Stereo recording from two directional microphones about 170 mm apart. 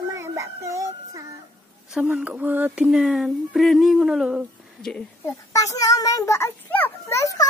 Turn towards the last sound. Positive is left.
turn(degrees=20)  # may be behind; listen again after turning